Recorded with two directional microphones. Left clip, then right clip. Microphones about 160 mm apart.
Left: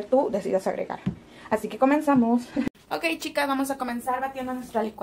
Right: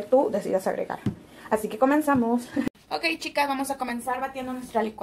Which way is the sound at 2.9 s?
45° left (ahead or behind).